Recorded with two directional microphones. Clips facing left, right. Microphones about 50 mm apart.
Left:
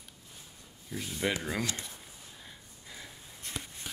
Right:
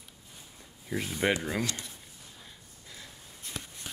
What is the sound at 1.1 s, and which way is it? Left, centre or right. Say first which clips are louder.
Speech: right 4 dB; right.